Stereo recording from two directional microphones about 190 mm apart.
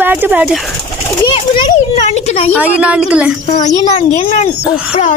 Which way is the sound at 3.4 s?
25° left (ahead or behind).